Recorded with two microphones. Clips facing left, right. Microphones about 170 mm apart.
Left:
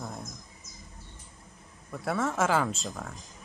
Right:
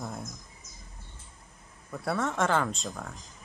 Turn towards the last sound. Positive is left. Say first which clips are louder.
# even
turn(degrees=0)  # may be behind; listen again after turning